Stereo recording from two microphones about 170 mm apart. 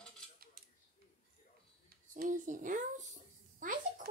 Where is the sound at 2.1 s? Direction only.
50° right (ahead or behind).